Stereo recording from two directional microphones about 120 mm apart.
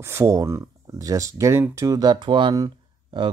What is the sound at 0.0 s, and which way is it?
Speech, 25° right (ahead or behind).